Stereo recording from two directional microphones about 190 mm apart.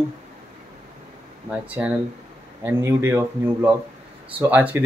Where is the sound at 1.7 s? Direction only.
5° right (ahead or behind).